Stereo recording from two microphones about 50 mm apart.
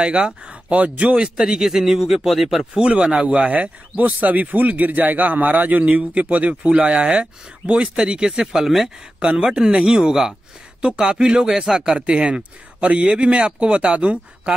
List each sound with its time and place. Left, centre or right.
0.0 s speech: right
1.3 s a man's voice: centre
2.7 s a man's voice: centre
9.6 s a man's voice: centre